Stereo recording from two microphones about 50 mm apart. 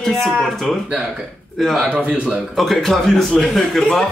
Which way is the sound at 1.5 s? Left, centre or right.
Centre.